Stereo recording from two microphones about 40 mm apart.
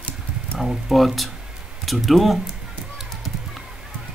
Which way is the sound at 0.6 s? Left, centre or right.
Centre.